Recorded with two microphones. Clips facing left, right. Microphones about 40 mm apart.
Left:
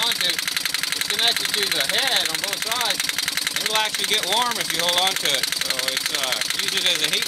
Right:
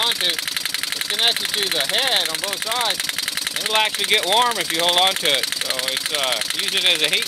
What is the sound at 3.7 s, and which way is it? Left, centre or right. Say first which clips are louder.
Speech: right 5 dB; right.